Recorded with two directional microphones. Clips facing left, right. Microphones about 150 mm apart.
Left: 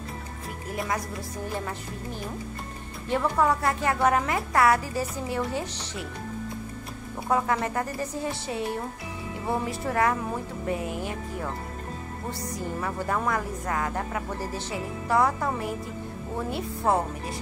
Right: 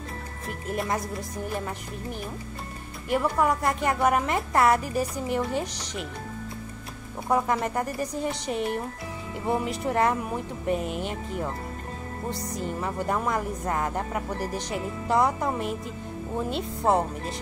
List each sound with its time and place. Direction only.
1.7 s speech: 15° right (ahead or behind)
7.2 s speech: 10° right (ahead or behind)
12.3 s speech: 20° right (ahead or behind)